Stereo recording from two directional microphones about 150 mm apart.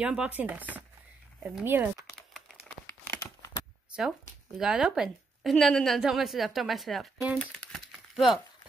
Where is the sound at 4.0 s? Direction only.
5° right (ahead or behind).